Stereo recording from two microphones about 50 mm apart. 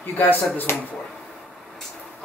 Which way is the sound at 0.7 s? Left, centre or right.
Left.